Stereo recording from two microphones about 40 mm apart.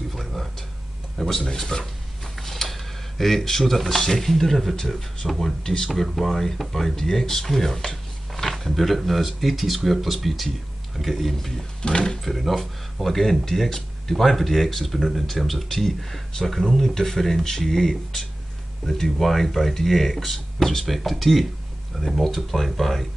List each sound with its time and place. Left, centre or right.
0.1 s a sound: centre
1.1 s speech: centre
1.7 s speech: left
2.4 s speech: centre
11.8 s speech: left
12.3 s speech: centre